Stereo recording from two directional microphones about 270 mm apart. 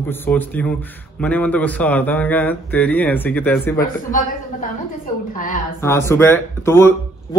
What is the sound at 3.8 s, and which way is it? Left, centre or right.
A man's voice, left.